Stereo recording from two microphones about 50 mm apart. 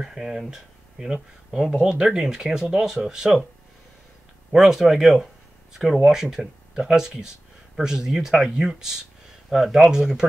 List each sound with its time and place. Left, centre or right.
0.0 s speech: centre
4.5 s speech: centre